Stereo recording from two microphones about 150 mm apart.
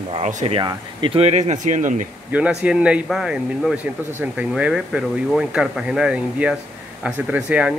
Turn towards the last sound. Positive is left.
turn(degrees=-5)  # may be behind; listen again after turning